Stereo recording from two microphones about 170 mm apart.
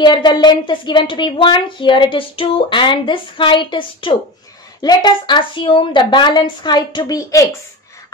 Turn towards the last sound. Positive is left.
turn(degrees=20)  # may be behind; listen again after turning